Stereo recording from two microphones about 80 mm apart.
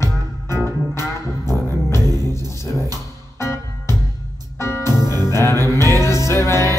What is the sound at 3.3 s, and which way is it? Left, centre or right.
Music, left.